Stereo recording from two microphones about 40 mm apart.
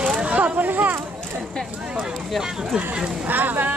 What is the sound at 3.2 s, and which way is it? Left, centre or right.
Speech, right.